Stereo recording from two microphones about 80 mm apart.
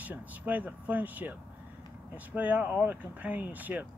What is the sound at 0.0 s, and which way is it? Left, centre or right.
Speech, right.